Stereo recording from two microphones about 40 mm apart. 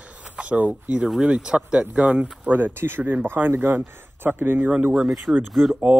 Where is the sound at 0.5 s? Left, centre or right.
Right.